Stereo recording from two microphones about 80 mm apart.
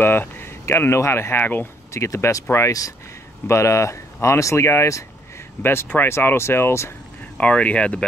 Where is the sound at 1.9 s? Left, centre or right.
Left.